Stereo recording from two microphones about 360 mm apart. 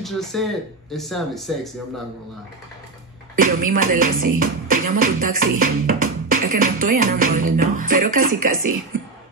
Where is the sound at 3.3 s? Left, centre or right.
Right.